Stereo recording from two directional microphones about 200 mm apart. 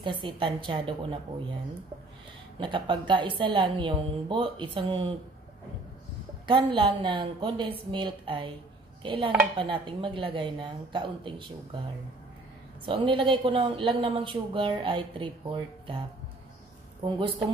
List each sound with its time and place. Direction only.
0.0 s a woman's voice: 25° right (ahead or behind)
2.6 s a woman's voice: 25° right (ahead or behind)
6.4 s a woman's voice: 25° right (ahead or behind)
12.8 s a woman's voice: 25° right (ahead or behind)
17.0 s a woman's voice: 20° right (ahead or behind)